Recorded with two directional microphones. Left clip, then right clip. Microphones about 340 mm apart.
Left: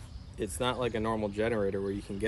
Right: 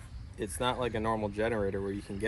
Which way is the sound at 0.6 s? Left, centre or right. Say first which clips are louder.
Even; centre.